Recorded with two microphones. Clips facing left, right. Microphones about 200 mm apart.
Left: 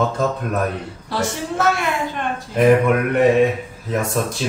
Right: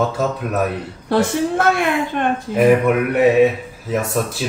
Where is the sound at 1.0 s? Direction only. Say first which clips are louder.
Right 8 dB; 55° right (ahead or behind).